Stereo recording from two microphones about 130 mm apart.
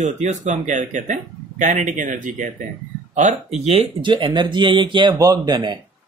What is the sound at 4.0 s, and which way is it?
Speech, 40° right (ahead or behind).